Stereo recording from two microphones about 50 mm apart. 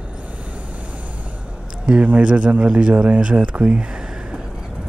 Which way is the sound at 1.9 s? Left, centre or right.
Right.